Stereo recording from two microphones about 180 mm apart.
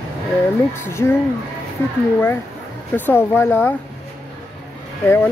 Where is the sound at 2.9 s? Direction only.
10° left (ahead or behind).